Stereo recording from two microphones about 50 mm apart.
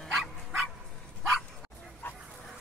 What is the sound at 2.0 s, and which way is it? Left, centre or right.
Vehicle, left.